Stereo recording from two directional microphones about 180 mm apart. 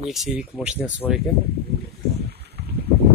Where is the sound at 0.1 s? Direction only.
Centre (ahead or behind).